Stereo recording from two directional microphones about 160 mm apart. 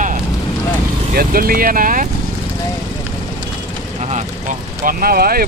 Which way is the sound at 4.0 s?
45° right (ahead or behind).